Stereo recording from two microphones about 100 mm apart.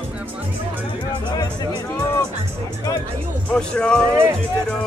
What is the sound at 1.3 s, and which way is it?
Music, 45° left (ahead or behind).